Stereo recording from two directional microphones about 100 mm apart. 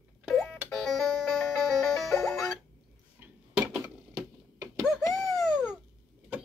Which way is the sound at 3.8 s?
35° right (ahead or behind).